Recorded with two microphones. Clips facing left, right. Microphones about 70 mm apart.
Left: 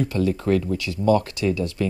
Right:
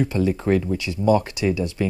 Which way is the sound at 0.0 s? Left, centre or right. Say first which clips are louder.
Right 1 dB; right.